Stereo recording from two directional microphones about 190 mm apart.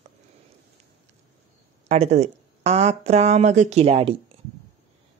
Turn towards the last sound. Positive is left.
turn(degrees=-30)  # may be behind; listen again after turning